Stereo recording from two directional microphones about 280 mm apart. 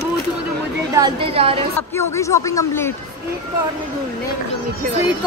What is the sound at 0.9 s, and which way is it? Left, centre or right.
Speech, centre.